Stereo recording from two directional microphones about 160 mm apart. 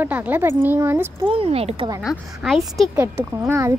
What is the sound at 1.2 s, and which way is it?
Speech, 35° right (ahead or behind).